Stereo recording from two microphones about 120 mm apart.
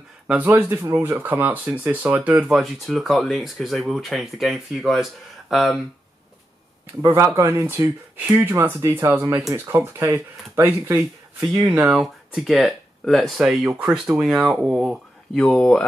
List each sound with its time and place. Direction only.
0.3 s speech: 10° right (ahead or behind)
2.6 s speech: centre (ahead or behind)
7.3 s speech: 20° right (ahead or behind)
11.7 s speech: 5° right (ahead or behind)
15.3 s speech: 5° left (ahead or behind)